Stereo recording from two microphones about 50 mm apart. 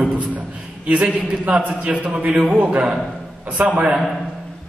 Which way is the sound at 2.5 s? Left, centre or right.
Right.